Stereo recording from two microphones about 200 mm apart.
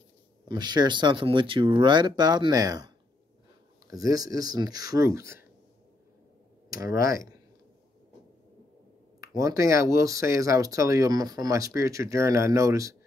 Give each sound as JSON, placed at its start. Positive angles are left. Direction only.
{"t": 0.5, "sound": "speech", "side_deg": -20}
{"t": 6.7, "sound": "speech", "side_deg": -15}
{"t": 9.2, "sound": "speech", "side_deg": -15}